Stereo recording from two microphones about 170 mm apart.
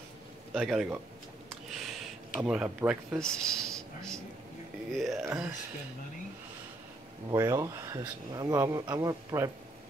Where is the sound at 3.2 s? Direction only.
5° left (ahead or behind).